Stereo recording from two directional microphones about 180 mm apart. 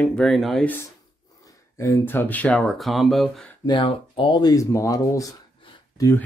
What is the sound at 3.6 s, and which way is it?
Speech, 30° left (ahead or behind).